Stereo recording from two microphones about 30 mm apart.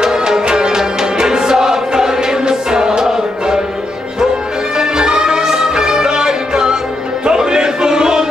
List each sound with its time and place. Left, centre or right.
0.0 s music: right
4.7 s music: right